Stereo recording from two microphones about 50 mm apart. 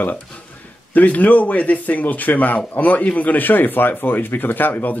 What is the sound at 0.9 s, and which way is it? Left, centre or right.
Speech, left.